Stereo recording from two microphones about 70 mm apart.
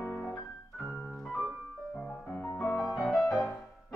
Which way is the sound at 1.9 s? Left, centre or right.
Centre.